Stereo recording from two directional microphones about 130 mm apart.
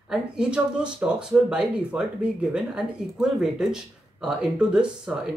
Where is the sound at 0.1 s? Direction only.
5° right (ahead or behind).